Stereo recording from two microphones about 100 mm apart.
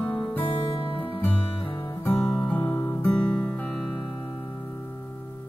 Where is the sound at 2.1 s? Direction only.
15° left (ahead or behind).